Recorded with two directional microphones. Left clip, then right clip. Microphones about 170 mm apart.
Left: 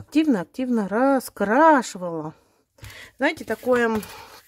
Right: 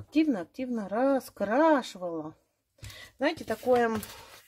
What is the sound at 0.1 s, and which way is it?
Speech, 40° left (ahead or behind).